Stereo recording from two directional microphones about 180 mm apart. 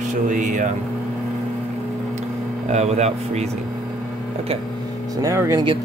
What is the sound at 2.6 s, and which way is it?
Speech, 40° right (ahead or behind).